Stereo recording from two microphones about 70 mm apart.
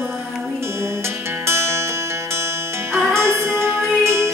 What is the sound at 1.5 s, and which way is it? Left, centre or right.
Music, right.